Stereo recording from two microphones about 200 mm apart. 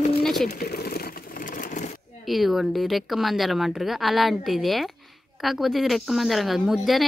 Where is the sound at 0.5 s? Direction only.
50° left (ahead or behind).